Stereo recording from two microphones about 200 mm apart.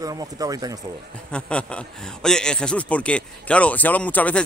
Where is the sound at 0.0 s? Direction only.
20° right (ahead or behind).